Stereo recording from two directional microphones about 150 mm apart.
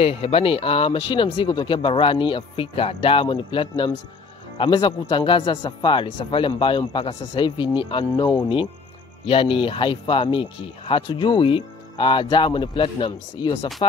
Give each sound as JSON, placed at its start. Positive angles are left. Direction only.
{"t": 0.0, "sound": "speech", "side_deg": 40}